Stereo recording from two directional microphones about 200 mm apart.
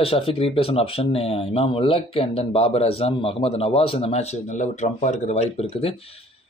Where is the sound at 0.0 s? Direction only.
30° left (ahead or behind).